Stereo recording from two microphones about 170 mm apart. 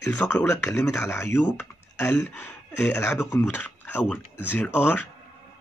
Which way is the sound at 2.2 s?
15° left (ahead or behind).